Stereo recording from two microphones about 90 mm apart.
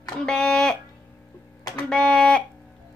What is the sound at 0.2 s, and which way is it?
Speech, 10° left (ahead or behind).